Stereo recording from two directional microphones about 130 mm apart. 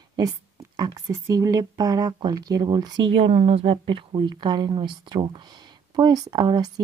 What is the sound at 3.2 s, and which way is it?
Speech, 50° right (ahead or behind).